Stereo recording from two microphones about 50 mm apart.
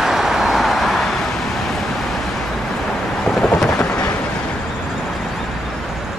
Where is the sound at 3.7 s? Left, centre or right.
Left.